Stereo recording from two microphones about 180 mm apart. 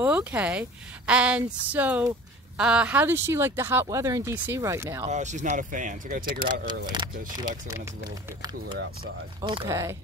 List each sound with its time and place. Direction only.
0.0 s speech: 10° right (ahead or behind)
5.0 s speech: 40° right (ahead or behind)
6.4 s speech: 25° right (ahead or behind)
9.4 s speech: 20° right (ahead or behind)